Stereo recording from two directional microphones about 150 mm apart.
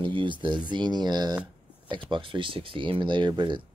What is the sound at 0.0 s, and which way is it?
Speech, 35° right (ahead or behind).